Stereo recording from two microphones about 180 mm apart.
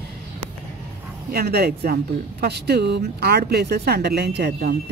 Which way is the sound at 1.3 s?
60° right (ahead or behind).